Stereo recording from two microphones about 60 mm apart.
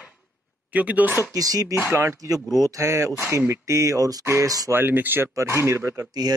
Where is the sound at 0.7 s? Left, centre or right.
Right.